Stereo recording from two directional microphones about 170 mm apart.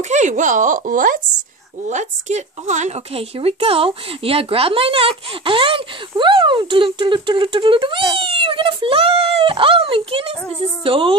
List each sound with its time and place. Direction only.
0.0 s speech: 45° right (ahead or behind)